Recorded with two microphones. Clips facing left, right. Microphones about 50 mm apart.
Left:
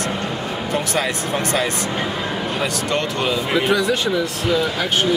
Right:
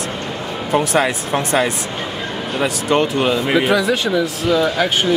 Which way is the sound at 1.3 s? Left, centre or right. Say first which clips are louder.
Right 3 dB; centre.